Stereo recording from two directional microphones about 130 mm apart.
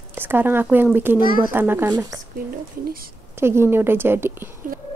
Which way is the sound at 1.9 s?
30° right (ahead or behind).